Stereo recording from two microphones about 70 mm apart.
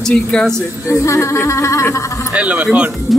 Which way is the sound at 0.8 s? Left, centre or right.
Left.